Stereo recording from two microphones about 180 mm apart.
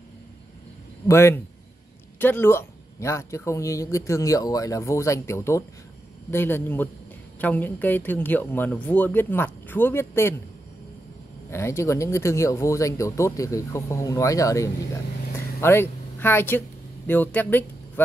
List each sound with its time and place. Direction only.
1.0 s speech: 15° left (ahead or behind)
11.5 s speech: 15° left (ahead or behind)
15.3 s a sound: 15° left (ahead or behind)